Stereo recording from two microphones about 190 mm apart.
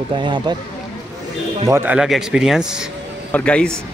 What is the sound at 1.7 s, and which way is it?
A man's voice, 5° right (ahead or behind).